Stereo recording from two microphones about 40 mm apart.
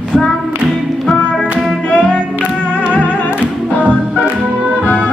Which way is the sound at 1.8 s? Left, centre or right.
Left.